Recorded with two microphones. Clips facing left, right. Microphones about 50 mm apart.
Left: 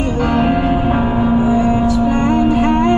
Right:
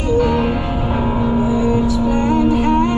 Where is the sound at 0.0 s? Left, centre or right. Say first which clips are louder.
Right 2 dB; left.